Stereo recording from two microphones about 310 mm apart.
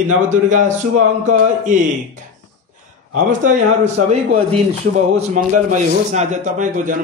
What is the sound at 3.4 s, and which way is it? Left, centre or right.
A man's voice, right.